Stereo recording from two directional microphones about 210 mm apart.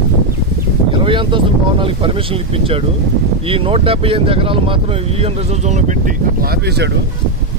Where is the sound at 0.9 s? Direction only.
25° right (ahead or behind); by 6.9 s 50° right (ahead or behind).